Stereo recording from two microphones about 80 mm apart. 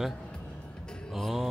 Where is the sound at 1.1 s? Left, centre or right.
Centre.